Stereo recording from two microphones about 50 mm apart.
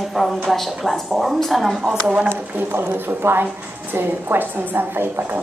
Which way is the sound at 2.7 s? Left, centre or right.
Right.